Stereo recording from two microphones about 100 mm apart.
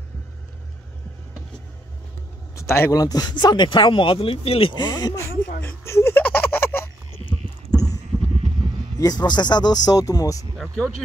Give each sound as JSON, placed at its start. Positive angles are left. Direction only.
{"t": 2.5, "sound": "speech", "side_deg": 25}
{"t": 3.0, "sound": "speech", "side_deg": 40}
{"t": 4.7, "sound": "speech", "side_deg": 45}
{"t": 5.9, "sound": "a sound", "side_deg": 25}
{"t": 7.7, "sound": "sheep", "side_deg": 5}
{"t": 8.1, "sound": "a sound", "side_deg": -5}
{"t": 8.9, "sound": "speech", "side_deg": 40}